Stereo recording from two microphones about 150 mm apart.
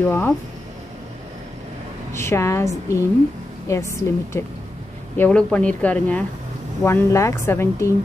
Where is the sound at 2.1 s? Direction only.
15° left (ahead or behind).